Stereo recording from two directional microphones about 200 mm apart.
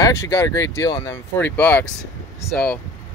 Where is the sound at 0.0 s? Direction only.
15° left (ahead or behind).